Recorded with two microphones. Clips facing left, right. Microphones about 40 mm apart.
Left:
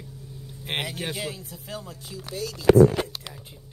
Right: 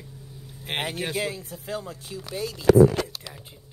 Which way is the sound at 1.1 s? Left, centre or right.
Right.